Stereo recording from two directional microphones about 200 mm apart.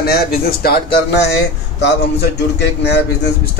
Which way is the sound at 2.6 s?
60° left (ahead or behind).